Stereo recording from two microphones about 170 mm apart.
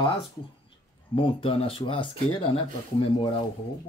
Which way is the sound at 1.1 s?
35° left (ahead or behind).